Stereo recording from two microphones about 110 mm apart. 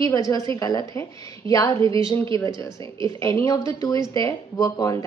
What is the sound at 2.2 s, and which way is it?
A woman's voice, 25° left (ahead or behind).